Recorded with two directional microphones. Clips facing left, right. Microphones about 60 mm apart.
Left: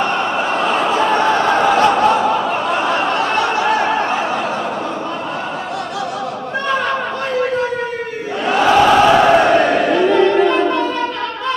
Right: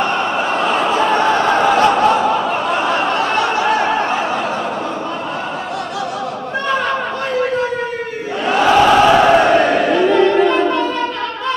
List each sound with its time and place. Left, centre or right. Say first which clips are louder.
0.0 s snicker: even; right
6.7 s chatter: even; right
8.5 s a sound: even; right